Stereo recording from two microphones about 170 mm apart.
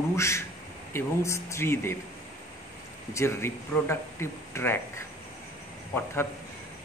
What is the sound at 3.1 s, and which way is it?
Speech, 15° left (ahead or behind).